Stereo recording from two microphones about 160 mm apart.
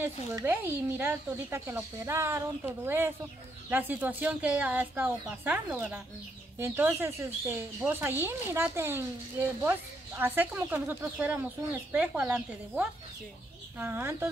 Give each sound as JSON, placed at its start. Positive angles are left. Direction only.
{"t": 0.0, "sound": "speech", "side_deg": -15}